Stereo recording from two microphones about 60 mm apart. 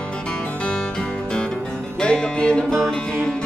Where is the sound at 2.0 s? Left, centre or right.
Centre.